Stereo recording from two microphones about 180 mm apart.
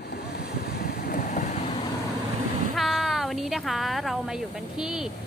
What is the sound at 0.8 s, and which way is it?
Vehicle, 55° left (ahead or behind).